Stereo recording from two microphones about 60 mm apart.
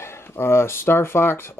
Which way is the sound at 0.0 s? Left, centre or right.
Left.